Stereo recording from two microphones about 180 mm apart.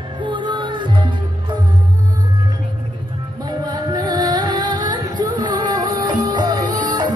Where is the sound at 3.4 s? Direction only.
20° right (ahead or behind).